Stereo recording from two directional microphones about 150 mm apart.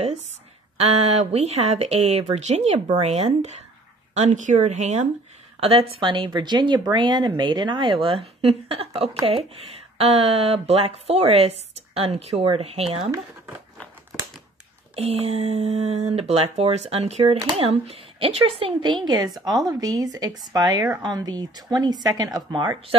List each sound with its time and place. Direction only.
0.7 s speech: 45° right (ahead or behind)
5.6 s speech: 40° right (ahead or behind)
15.0 s speech: 45° right (ahead or behind); by 22.7 s 30° right (ahead or behind)